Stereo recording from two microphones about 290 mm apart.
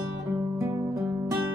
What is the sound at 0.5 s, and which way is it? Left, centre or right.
Music, centre.